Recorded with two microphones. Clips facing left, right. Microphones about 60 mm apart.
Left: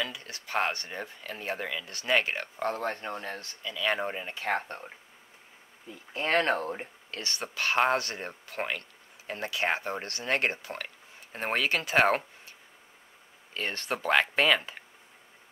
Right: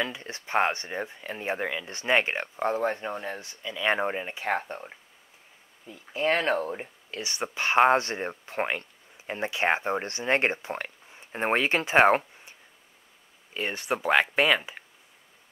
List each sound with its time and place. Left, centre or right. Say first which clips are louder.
0.0 s speech: right 4 dB; right
13.5 s speech: right 3 dB; centre